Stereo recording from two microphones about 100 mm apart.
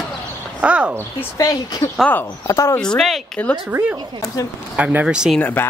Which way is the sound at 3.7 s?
20° right (ahead or behind).